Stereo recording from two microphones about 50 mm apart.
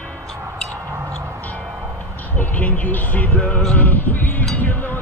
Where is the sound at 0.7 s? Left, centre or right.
Right.